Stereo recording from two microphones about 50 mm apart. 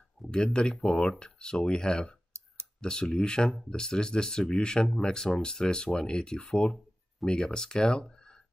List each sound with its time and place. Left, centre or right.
0.3 s speech: centre